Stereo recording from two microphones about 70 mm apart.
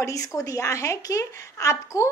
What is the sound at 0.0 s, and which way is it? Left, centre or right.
A woman's voice, left.